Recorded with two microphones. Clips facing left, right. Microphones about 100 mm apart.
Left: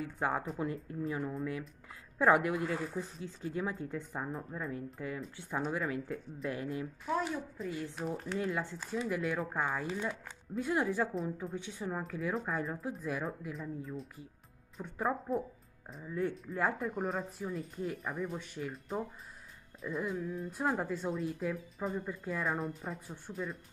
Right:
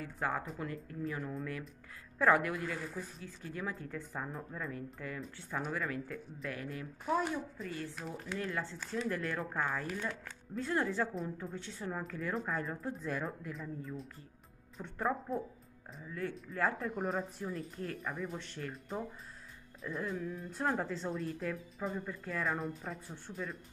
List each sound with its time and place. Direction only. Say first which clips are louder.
0.0 s speech: left 3 dB; 20° left (ahead or behind)
7.1 s speech: right 2 dB; 5° right (ahead or behind)
7.6 s speech: left 4 dB; 15° left (ahead or behind)
16.1 s speech: left 5 dB; 20° left (ahead or behind)
16.7 s speech: left 1 dB; centre (ahead or behind)
20.0 s speech: left 2 dB; 10° left (ahead or behind)